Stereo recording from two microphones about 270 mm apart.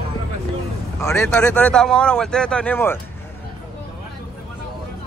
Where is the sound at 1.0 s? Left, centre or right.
Centre.